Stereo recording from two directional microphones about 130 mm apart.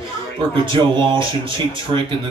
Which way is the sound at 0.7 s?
40° right (ahead or behind).